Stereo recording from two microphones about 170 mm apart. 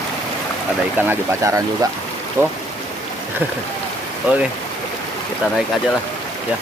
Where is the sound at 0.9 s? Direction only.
15° right (ahead or behind).